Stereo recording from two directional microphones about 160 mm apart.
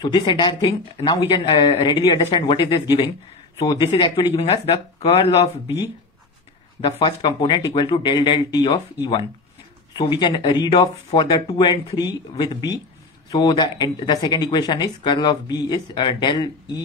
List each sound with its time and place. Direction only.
0.0 s speech: 30° left (ahead or behind)
4.4 s speech: 35° left (ahead or behind)
6.8 s speech: 30° left (ahead or behind)
9.9 s speech: 30° left (ahead or behind)